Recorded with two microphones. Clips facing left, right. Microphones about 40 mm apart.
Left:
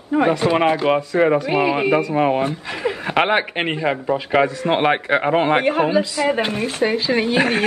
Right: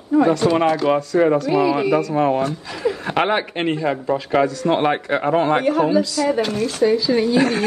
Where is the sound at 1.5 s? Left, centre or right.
Left.